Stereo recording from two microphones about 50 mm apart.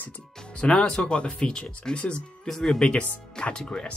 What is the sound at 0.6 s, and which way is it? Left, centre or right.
Speech, centre.